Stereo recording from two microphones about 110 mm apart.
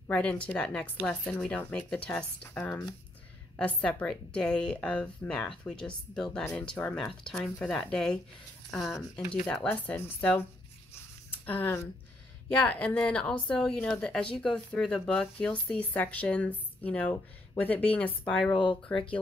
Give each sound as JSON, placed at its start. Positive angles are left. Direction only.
{"t": 0.1, "sound": "speech", "side_deg": 10}
{"t": 9.3, "sound": "speech", "side_deg": 10}
{"t": 11.4, "sound": "speech", "side_deg": 15}
{"t": 18.5, "sound": "speech", "side_deg": 50}
{"t": 18.9, "sound": "speech", "side_deg": 10}